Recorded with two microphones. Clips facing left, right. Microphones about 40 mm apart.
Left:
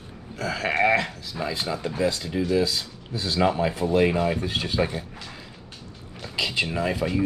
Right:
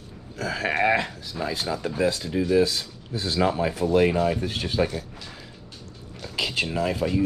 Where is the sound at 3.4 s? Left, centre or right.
Left.